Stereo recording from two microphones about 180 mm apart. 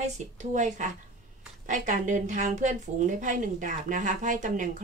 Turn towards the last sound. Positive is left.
turn(degrees=-45)  # may be behind; listen again after turning